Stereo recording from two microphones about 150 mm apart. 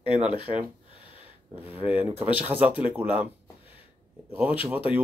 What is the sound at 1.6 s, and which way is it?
Speech, 10° right (ahead or behind).